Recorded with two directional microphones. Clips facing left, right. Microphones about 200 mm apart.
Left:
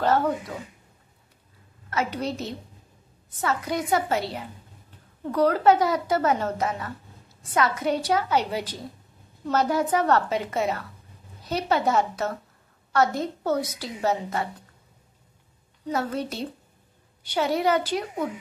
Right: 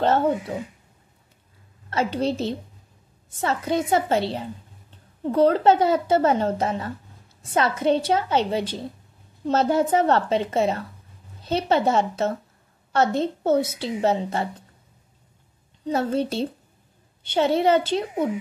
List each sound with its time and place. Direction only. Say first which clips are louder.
0.0 s a woman's voice: right 2 dB; 25° right (ahead or behind)
1.9 s a woman's voice: right 4 dB; 30° right (ahead or behind)
15.8 s a woman's voice: right 5 dB; 25° right (ahead or behind)